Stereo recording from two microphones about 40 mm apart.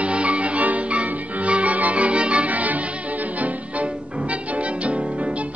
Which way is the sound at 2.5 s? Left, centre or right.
Right.